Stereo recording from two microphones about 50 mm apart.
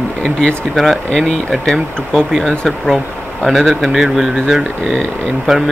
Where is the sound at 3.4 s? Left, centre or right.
Centre.